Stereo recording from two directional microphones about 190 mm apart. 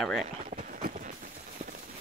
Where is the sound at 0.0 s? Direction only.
Centre (ahead or behind).